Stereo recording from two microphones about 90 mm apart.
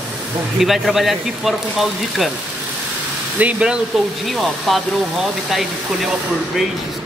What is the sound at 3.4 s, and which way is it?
Speech, 10° right (ahead or behind).